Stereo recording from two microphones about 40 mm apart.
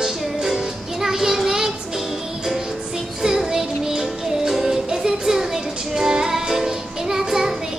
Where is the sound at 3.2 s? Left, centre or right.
Centre.